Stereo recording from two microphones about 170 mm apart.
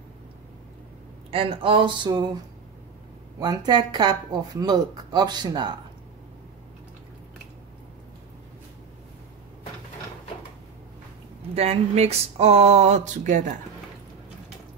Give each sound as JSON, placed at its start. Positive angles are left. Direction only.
{"t": 1.3, "sound": "speech", "side_deg": -35}
{"t": 3.3, "sound": "speech", "side_deg": -25}
{"t": 11.5, "sound": "speech", "side_deg": -35}